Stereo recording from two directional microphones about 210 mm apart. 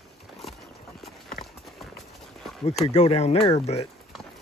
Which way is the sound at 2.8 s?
30° left (ahead or behind).